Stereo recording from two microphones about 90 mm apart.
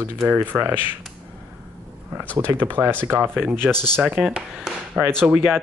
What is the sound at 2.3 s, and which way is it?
Speech, 25° right (ahead or behind).